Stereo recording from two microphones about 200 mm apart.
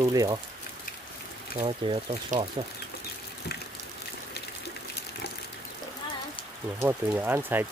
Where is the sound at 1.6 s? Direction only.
25° right (ahead or behind).